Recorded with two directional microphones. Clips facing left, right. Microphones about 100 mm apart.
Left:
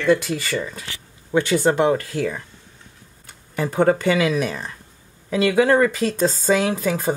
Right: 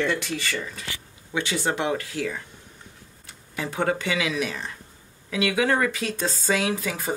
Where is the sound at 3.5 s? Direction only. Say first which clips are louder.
Left 7 dB; 45° left (ahead or behind).